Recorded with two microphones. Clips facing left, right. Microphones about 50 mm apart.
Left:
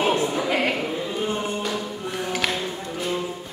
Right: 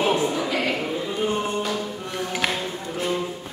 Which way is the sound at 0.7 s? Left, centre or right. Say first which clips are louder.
Even; centre.